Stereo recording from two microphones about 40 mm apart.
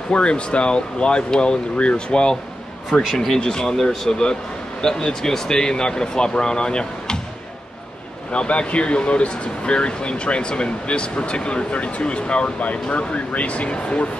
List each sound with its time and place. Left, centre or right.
0.1 s speech: left
2.9 s speech: centre
8.3 s speech: left